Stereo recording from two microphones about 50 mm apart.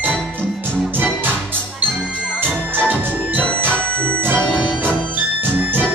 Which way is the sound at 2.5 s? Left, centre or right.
Right.